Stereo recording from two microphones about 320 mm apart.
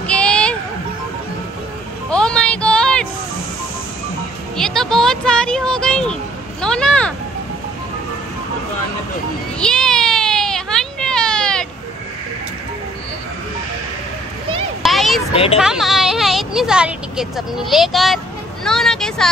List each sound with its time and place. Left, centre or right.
0.0 s music: centre
2.0 s music: centre
4.6 s a sound: centre
6.6 s vehicle: centre
9.6 s baby cry: centre
14.8 s a sound: centre
15.6 s vehicle: centre